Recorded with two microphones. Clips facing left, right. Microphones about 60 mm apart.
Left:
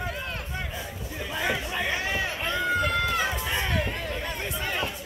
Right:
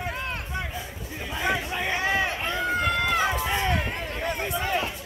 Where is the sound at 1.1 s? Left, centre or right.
Centre.